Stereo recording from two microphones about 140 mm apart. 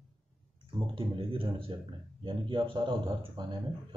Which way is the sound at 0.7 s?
40° right (ahead or behind).